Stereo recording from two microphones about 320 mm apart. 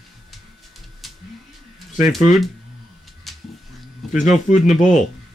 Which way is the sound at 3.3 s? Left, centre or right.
Centre.